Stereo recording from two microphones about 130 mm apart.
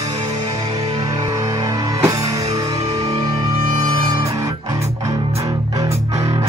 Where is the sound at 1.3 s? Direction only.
25° right (ahead or behind).